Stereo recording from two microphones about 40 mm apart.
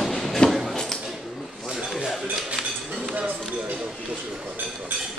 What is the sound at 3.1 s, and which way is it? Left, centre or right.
Music, right.